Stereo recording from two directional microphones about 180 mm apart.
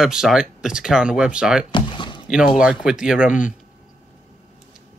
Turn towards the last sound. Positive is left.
turn(degrees=-5)  # may be behind; listen again after turning